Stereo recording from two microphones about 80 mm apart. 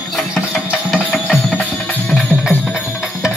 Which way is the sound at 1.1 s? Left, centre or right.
Centre.